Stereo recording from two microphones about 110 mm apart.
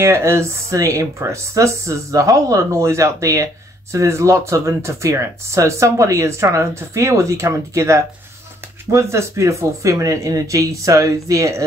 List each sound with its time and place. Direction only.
0.0 s speech: 25° right (ahead or behind)